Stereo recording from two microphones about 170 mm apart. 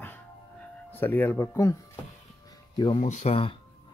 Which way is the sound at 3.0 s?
45° left (ahead or behind).